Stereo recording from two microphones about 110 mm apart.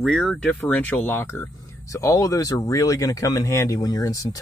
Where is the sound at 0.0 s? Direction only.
5° left (ahead or behind).